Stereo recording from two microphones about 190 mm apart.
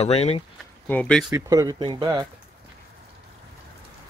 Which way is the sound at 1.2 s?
15° right (ahead or behind).